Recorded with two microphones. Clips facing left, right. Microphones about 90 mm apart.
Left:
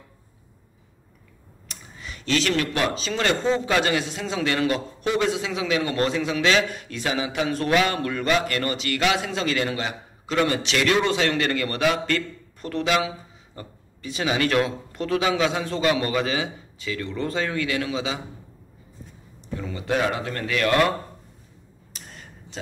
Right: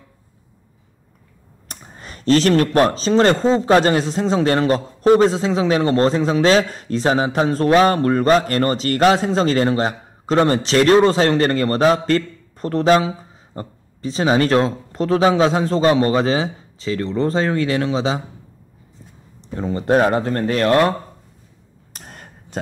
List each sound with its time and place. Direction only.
1.7 s speech: 45° right (ahead or behind)
19.5 s speech: 40° right (ahead or behind)
21.9 s a sound: 50° right (ahead or behind)